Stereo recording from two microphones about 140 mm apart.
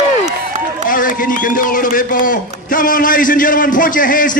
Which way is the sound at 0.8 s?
75° left (ahead or behind).